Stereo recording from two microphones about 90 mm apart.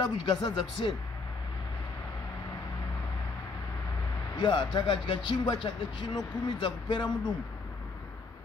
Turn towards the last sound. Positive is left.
turn(degrees=60)  # may be behind; listen again after turning